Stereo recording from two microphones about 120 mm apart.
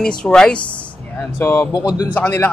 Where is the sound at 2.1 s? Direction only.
15° left (ahead or behind).